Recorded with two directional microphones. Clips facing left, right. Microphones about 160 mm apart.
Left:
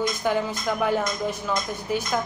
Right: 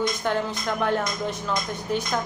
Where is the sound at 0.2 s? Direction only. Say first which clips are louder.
Left 1 dB; 5° left (ahead or behind).